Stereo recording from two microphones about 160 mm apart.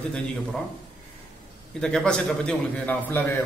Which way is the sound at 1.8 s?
5° left (ahead or behind).